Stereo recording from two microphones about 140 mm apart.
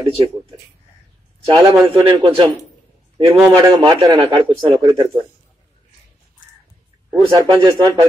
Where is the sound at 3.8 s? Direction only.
30° right (ahead or behind).